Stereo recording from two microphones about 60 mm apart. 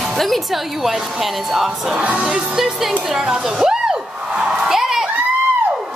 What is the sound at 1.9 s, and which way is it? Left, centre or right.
Speech, centre.